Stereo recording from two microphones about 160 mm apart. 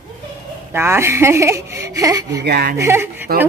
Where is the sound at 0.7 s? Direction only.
15° right (ahead or behind).